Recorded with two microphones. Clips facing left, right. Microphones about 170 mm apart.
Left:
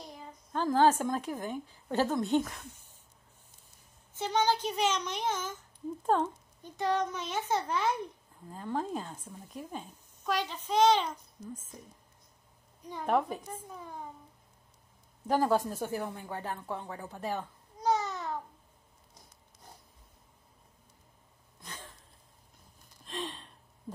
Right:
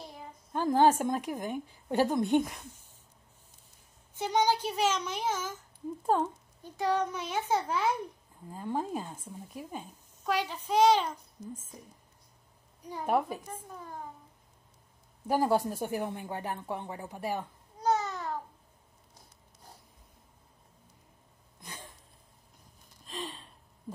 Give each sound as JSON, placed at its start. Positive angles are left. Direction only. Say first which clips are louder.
{"t": 0.0, "sound": "a sound", "louder": "right 1 dB", "side_deg": -5}
{"t": 0.5, "sound": "speech", "louder": "right 1 dB", "side_deg": -15}
{"t": 4.1, "sound": "speech", "louder": "right 1 dB", "side_deg": -15}
{"t": 12.9, "sound": "speech", "louder": "even", "side_deg": -10}
{"t": 13.5, "sound": "speech", "louder": "even", "side_deg": 5}
{"t": 15.2, "sound": "speech", "louder": "even", "side_deg": -10}
{"t": 17.9, "sound": "babbling", "louder": "right 1 dB", "side_deg": -5}
{"t": 21.5, "sound": "a sound", "louder": "even", "side_deg": -15}
{"t": 23.0, "sound": "a sound", "louder": "left 1 dB", "side_deg": 0}